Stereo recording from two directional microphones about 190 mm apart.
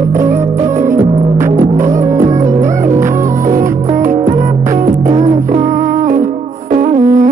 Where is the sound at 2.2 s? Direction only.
40° right (ahead or behind).